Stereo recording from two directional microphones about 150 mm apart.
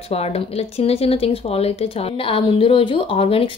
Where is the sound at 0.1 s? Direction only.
45° left (ahead or behind).